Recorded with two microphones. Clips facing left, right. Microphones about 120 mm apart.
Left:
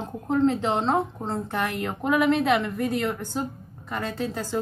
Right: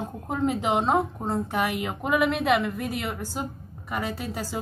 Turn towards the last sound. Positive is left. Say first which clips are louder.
# left 3 dB
turn(degrees=-10)  # may be behind; listen again after turning